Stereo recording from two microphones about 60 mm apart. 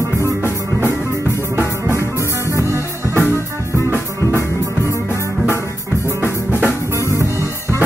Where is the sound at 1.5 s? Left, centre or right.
Right.